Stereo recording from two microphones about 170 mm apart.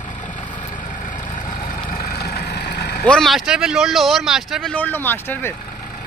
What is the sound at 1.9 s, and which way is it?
Vehicle, 60° left (ahead or behind).